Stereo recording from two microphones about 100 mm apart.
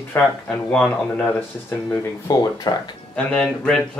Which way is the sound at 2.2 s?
45° left (ahead or behind).